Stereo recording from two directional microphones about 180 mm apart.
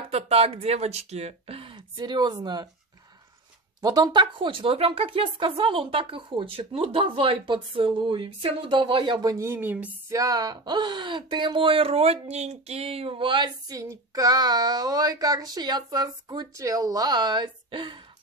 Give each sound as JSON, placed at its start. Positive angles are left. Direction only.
{"t": 0.1, "sound": "speech", "side_deg": -35}
{"t": 3.8, "sound": "speech", "side_deg": -20}